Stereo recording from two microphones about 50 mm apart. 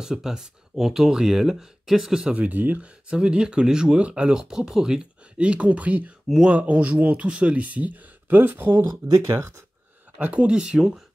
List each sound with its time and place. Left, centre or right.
0.0 s speech: centre
2.3 s speech: right
3.1 s speech: centre; by 8.8 s right
9.0 s speech: right
10.2 s speech: right
10.6 s speech: centre